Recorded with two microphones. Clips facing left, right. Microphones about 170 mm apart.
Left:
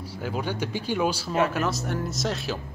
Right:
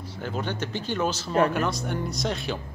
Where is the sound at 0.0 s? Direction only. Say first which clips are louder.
Left 1 dB; 10° left (ahead or behind).